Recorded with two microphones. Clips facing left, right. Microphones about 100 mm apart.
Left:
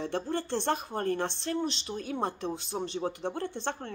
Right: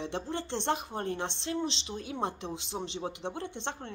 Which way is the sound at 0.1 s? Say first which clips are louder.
Left 3 dB; 20° right (ahead or behind).